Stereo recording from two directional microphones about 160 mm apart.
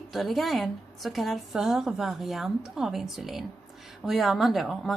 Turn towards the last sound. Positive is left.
turn(degrees=0)  # may be behind; listen again after turning